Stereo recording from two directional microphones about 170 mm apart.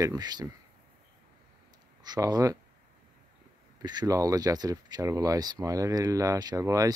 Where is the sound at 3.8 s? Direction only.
20° right (ahead or behind).